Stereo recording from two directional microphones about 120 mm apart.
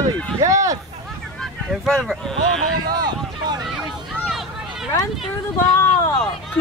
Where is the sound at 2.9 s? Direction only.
35° right (ahead or behind).